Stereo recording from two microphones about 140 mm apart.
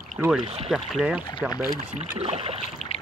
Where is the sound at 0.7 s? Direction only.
Centre (ahead or behind).